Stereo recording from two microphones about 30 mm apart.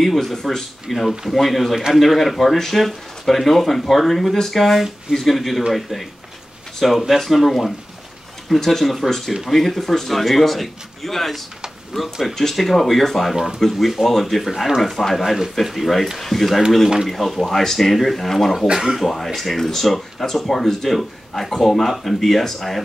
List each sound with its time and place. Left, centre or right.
0.0 s speech: centre
0.4 s speech: centre
0.8 s speech: centre
18.7 s speech: centre
18.9 s speech: centre